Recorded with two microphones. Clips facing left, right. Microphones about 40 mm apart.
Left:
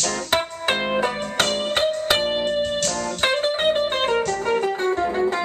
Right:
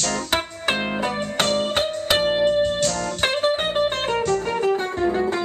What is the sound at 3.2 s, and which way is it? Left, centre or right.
Music, centre.